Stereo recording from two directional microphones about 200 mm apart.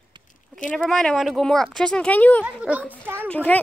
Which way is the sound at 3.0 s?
10° right (ahead or behind).